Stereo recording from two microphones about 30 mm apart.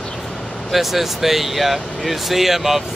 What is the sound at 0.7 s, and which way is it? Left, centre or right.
Speech, centre.